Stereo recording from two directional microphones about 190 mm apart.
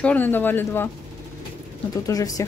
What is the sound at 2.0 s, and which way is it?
Speech, 20° left (ahead or behind).